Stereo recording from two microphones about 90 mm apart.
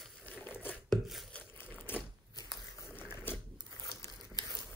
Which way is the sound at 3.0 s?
25° left (ahead or behind).